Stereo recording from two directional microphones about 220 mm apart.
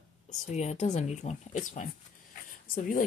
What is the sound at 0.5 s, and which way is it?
Speech, 30° left (ahead or behind).